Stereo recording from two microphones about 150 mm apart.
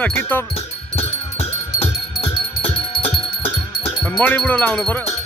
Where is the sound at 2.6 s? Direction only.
40° left (ahead or behind).